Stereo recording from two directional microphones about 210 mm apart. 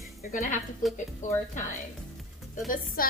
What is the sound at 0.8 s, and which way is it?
Speech, centre (ahead or behind).